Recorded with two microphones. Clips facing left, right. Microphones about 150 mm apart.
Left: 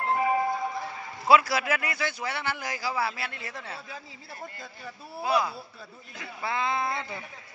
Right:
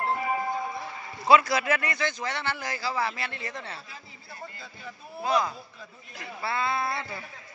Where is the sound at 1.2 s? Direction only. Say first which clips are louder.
Right 1 dB; 5° left (ahead or behind).